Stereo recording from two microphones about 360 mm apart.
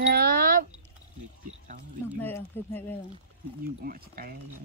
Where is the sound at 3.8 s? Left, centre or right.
Right.